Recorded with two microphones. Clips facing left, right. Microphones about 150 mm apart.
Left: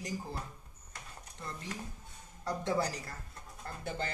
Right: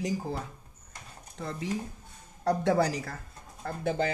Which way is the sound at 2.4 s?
75° right (ahead or behind).